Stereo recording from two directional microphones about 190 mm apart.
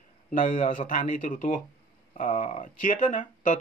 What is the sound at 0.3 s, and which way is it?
Speech, 45° left (ahead or behind).